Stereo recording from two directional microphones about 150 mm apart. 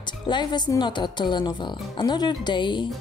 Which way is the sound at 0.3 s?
30° left (ahead or behind).